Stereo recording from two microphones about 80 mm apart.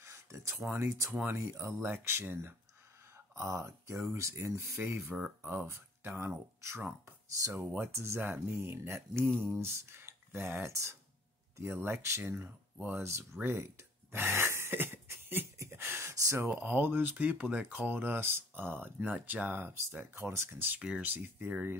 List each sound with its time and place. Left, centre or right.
0.0 s a sound: right
0.7 s speech: right
1.1 s speech: right
1.4 s speech: right
3.3 s speech: right
5.4 s speech: centre
7.3 s speech: right
7.6 s speech: right
15.6 s a sound: right
16.5 s speech: right
20.8 s speech: centre